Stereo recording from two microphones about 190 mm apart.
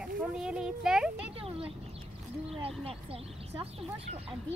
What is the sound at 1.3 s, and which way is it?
Speech, 30° right (ahead or behind).